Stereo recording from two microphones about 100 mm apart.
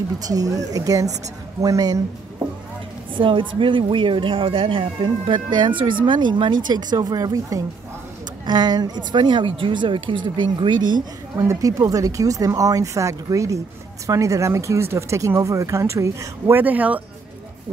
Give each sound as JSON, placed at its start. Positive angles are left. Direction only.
{"t": 0.2, "sound": "speech", "side_deg": -40}
{"t": 3.2, "sound": "speech", "side_deg": -60}
{"t": 11.3, "sound": "speech", "side_deg": -35}
{"t": 16.5, "sound": "speech", "side_deg": -15}